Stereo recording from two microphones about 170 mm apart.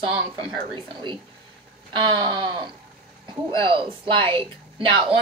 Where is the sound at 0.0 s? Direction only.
30° right (ahead or behind).